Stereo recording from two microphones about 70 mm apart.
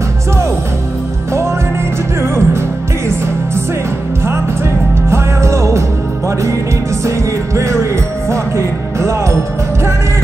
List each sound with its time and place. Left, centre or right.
2.2 s music: right
5.1 s music: right